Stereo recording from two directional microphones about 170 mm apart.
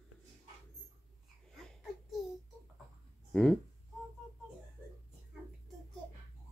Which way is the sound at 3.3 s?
5° left (ahead or behind).